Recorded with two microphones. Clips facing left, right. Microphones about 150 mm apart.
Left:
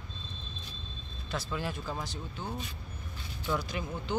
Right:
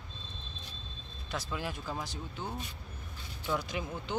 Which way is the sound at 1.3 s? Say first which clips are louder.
Left 2 dB; 15° right (ahead or behind).